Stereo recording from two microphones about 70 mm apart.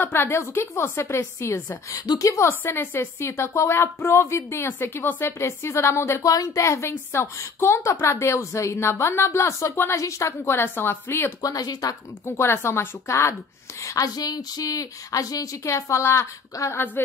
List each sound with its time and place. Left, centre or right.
0.0 s a woman's voice: left
5.4 s a woman's voice: left
6.2 s a woman's voice: left
10.5 s a woman's voice: left
11.4 s speech: left
12.4 s a woman's voice: left
13.8 s speech: left
16.7 s a woman's voice: left